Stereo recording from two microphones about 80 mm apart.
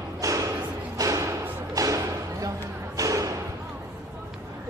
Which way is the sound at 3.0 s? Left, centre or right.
Right.